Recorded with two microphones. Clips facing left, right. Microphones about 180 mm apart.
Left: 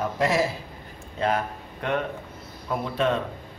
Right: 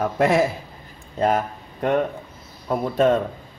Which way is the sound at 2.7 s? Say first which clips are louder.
Right 6 dB; 45° right (ahead or behind).